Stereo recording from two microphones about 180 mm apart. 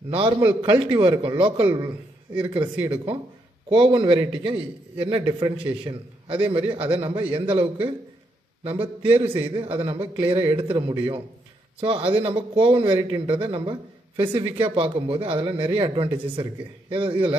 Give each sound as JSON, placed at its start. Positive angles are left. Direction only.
{"t": 0.5, "sound": "speech", "side_deg": -30}
{"t": 1.7, "sound": "a man's voice", "side_deg": -15}
{"t": 3.6, "sound": "speech", "side_deg": -25}